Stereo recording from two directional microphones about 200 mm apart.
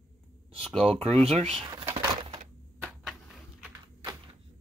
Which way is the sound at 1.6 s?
20° right (ahead or behind).